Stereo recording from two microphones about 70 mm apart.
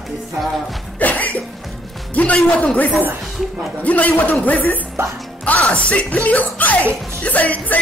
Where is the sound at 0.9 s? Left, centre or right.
Left.